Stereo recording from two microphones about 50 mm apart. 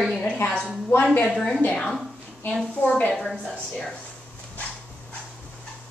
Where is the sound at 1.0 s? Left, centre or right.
Left.